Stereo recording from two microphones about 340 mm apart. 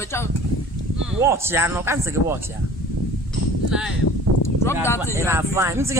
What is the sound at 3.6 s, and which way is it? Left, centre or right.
Speech, centre.